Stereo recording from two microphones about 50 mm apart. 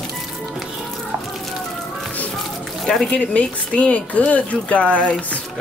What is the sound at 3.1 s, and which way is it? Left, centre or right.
Speech, left.